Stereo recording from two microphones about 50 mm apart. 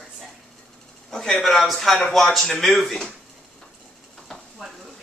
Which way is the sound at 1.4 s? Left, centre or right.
Centre.